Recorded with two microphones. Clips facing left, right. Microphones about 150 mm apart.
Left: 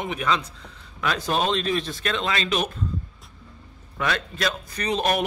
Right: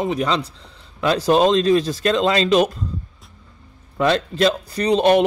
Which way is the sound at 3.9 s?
30° right (ahead or behind).